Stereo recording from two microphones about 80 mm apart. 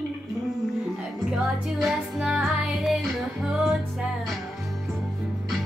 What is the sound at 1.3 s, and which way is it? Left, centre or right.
Music, centre.